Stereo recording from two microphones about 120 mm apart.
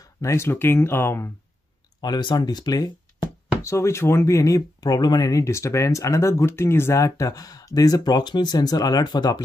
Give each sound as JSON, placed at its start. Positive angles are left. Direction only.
{"t": 0.2, "sound": "speech", "side_deg": 25}
{"t": 2.0, "sound": "speech", "side_deg": 35}